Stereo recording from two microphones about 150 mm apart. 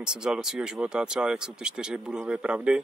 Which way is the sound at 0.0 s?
5° right (ahead or behind).